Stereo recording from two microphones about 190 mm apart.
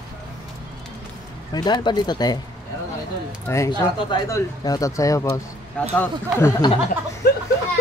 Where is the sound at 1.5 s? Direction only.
20° left (ahead or behind).